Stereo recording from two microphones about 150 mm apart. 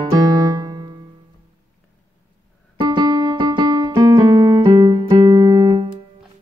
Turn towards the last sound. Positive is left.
turn(degrees=-20)  # may be behind; listen again after turning